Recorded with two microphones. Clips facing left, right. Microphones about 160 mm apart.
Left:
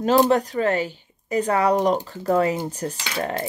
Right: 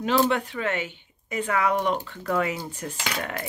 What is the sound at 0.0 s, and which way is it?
Speech, 40° left (ahead or behind).